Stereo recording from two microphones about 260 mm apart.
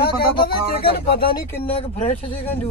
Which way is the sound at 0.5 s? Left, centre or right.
Left.